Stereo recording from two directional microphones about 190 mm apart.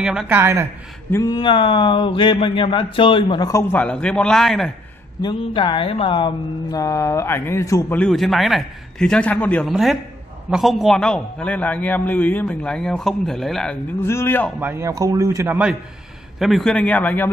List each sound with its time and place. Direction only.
0.0 s a man's voice: 5° right (ahead or behind)
1.1 s speech: 20° left (ahead or behind); by 4.7 s centre (ahead or behind)
5.2 s a man's voice: 25° left (ahead or behind); by 13.7 s centre (ahead or behind)
14.0 s speech: 15° left (ahead or behind)
14.6 s a man's voice: 10° right (ahead or behind)
16.3 s speech: centre (ahead or behind)